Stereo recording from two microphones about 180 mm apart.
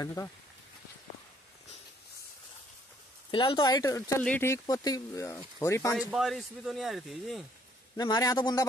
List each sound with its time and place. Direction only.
0.0 s speech: 15° left (ahead or behind)
3.3 s speech: 25° left (ahead or behind)
5.9 s speech: 5° right (ahead or behind)
8.0 s speech: 20° left (ahead or behind)